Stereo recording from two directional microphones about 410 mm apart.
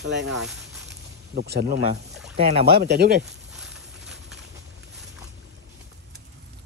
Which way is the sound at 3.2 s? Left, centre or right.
Centre.